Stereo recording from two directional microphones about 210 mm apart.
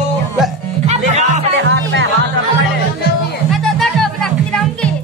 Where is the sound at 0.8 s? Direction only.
30° right (ahead or behind).